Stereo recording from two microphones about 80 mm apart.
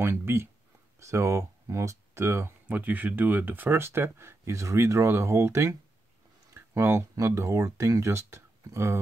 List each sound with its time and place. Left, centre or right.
0.0 s speech: right
2.7 s speech: right